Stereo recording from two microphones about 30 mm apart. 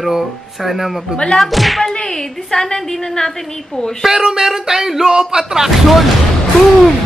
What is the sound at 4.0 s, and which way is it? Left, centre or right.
Music, centre.